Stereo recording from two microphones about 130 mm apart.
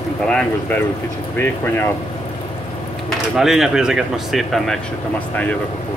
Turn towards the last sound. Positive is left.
turn(degrees=0)  # may be behind; listen again after turning